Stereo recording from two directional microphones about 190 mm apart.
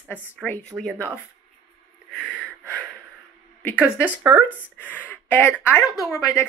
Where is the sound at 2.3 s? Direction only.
5° left (ahead or behind).